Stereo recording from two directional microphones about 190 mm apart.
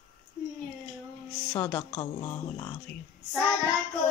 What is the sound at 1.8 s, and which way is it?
Speech, 25° left (ahead or behind).